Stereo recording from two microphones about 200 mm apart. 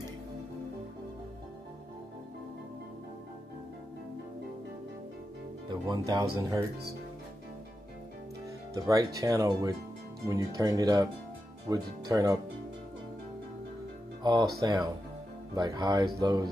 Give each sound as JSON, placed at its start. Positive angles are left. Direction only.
{"t": 5.7, "sound": "speech", "side_deg": -20}
{"t": 8.7, "sound": "speech", "side_deg": -15}
{"t": 14.6, "sound": "speech", "side_deg": -20}